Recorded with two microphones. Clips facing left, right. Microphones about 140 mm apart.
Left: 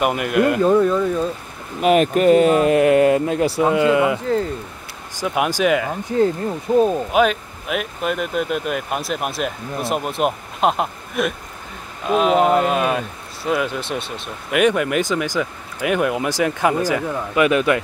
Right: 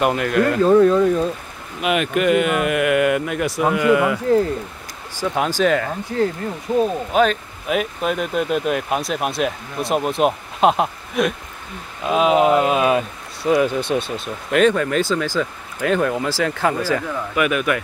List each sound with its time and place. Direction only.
0.0 s speech: 10° left (ahead or behind)
0.7 s speech: centre (ahead or behind)
1.8 s speech: 40° left (ahead or behind); by 5.9 s 10° left (ahead or behind)
6.7 s speech: 35° left (ahead or behind)
7.1 s speech: 10° left (ahead or behind)
14.6 s speech: 15° left (ahead or behind)
17.5 s speech: 30° left (ahead or behind)